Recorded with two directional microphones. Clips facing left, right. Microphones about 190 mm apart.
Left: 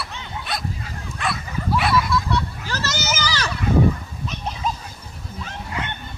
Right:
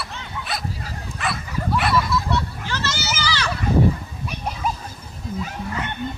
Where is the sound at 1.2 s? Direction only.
Centre (ahead or behind).